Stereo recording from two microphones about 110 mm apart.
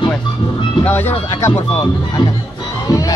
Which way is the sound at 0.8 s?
15° left (ahead or behind).